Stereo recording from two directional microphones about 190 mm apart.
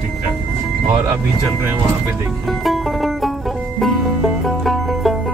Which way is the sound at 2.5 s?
Centre (ahead or behind).